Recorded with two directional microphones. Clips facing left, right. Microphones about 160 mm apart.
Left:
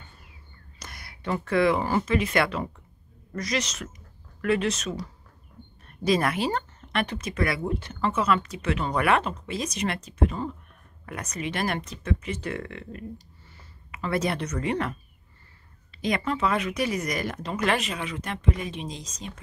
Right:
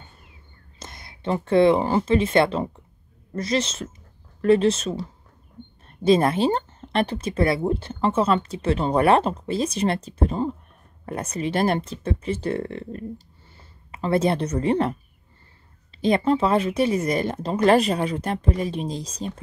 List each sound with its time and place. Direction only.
0.7 s speech: 25° right (ahead or behind)